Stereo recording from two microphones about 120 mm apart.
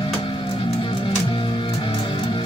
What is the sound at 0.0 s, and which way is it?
Music, 45° left (ahead or behind).